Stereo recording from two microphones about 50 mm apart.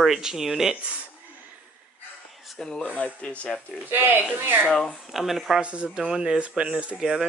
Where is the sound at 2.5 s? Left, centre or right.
Centre.